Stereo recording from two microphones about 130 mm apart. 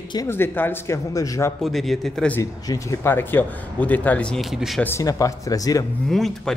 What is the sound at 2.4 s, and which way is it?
Speech, 25° left (ahead or behind).